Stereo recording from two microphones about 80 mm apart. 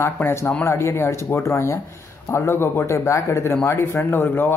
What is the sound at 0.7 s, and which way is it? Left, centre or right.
Speech, left.